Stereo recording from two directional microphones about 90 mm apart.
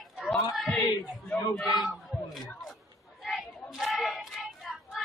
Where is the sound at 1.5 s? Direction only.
Centre (ahead or behind).